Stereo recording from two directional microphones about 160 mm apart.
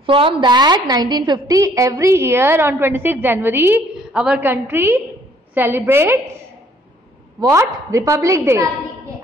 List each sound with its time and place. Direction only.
0.0 s a woman's voice: 35° right (ahead or behind); by 6.1 s 15° right (ahead or behind)
7.3 s a woman's voice: 20° right (ahead or behind)